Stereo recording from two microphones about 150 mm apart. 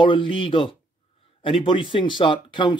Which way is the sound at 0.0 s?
35° left (ahead or behind).